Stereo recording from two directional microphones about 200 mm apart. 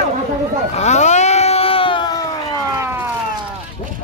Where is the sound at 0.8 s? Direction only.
35° left (ahead or behind).